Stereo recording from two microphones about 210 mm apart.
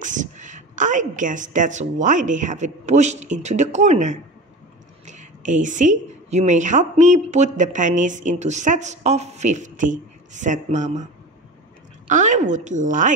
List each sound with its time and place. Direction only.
0.0 s a woman's voice: 35° right (ahead or behind)
12.1 s a woman's voice: 35° right (ahead or behind)